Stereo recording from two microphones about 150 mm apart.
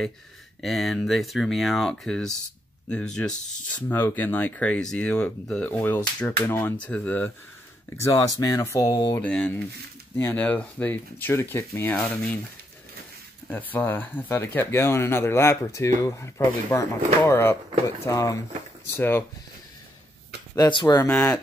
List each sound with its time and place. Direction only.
0.6 s speech: centre (ahead or behind); by 9.2 s 25° left (ahead or behind)
9.2 s speech: 10° left (ahead or behind)
13.5 s speech: 10° left (ahead or behind)
20.5 s speech: 25° left (ahead or behind)
21.1 s speech: 5° left (ahead or behind)